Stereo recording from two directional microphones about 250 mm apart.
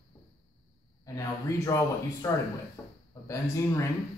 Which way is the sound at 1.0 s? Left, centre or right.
Centre.